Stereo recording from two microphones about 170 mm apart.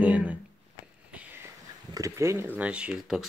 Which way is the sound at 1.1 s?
10° right (ahead or behind).